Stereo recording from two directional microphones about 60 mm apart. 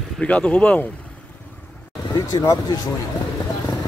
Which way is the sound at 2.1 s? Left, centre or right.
Left.